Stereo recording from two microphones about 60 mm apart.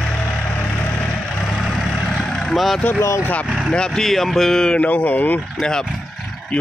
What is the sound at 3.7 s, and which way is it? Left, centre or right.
Speech, centre.